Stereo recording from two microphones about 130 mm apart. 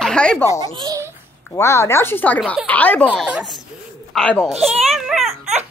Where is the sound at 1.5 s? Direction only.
20° left (ahead or behind).